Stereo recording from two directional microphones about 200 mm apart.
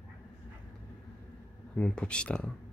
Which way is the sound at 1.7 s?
5° left (ahead or behind).